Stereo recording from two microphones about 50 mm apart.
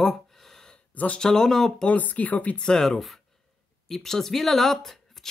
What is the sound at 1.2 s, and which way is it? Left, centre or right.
Speech, centre.